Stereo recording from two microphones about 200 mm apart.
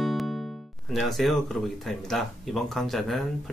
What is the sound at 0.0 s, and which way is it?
Speech, centre (ahead or behind).